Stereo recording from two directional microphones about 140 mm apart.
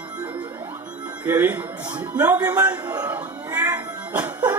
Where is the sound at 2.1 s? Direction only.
10° right (ahead or behind).